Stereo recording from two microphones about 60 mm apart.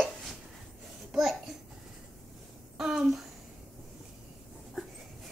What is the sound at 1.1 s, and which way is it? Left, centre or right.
Speech, centre.